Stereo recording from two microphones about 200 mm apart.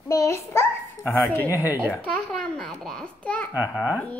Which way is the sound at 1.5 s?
10° right (ahead or behind).